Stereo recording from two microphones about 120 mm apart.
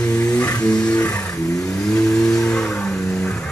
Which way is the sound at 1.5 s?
25° left (ahead or behind).